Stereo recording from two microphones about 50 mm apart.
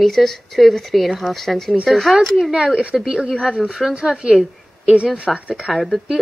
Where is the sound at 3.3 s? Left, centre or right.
Centre.